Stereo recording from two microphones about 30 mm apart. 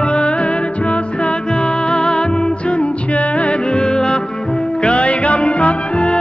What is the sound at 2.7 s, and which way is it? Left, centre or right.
Music, left.